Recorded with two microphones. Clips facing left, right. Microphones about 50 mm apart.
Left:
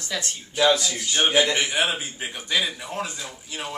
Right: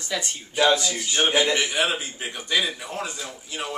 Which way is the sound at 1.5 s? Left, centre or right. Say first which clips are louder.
Even; centre.